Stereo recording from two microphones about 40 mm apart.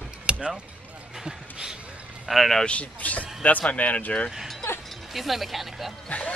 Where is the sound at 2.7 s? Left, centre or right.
Left.